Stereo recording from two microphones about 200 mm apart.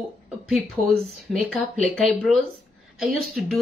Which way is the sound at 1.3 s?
Centre (ahead or behind).